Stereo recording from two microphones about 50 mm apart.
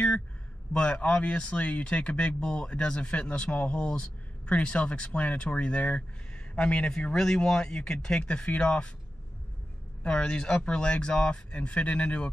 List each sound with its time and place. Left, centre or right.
0.7 s speech: left
7.2 s a man's voice: centre
8.2 s speech: left
10.0 s speech: centre